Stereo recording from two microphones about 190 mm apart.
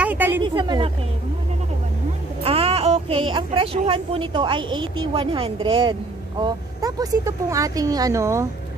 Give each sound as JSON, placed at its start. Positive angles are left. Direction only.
{"t": 0.0, "sound": "a woman's voice", "side_deg": -10}
{"t": 0.4, "sound": "speech", "side_deg": -25}
{"t": 2.4, "sound": "a woman's voice", "side_deg": -30}